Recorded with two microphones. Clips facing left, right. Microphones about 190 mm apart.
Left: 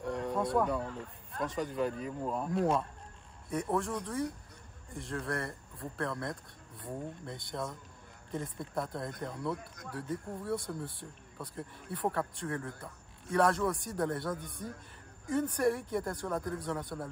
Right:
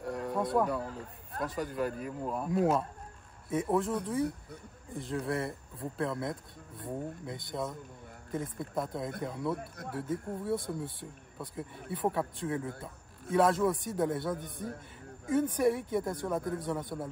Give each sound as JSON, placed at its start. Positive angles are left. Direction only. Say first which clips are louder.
{"t": 0.0, "sound": "a sound", "louder": "even", "side_deg": -5}
{"t": 1.4, "sound": "speech", "louder": "even", "side_deg": -5}
{"t": 9.6, "sound": "speech", "louder": "right 5 dB", "side_deg": -60}
{"t": 9.9, "sound": "speech", "louder": "right 3 dB", "side_deg": 0}